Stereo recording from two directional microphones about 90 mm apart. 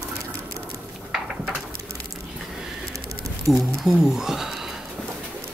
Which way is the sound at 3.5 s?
5° right (ahead or behind).